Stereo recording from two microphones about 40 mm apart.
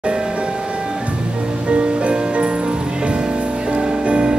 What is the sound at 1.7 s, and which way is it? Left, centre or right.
Music, right.